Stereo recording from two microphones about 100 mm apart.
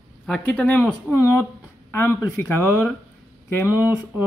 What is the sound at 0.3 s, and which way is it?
Speech, 15° left (ahead or behind).